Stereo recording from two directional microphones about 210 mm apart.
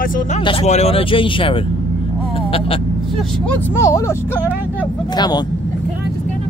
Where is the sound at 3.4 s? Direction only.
10° left (ahead or behind).